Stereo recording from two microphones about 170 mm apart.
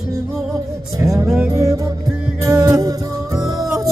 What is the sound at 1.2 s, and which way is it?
Music, 5° right (ahead or behind).